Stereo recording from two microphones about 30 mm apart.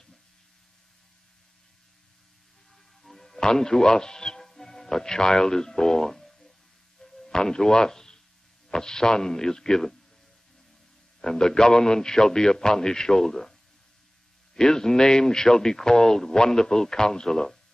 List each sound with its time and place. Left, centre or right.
3.0 s music: centre
3.3 s a man's voice: left
7.0 s a sound: centre
8.6 s speech: left
11.1 s speech: left